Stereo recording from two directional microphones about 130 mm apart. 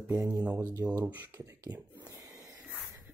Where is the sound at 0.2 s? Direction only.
30° right (ahead or behind).